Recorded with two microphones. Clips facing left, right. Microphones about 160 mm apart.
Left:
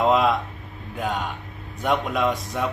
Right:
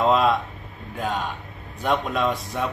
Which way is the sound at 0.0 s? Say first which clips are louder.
Even; 15° left (ahead or behind).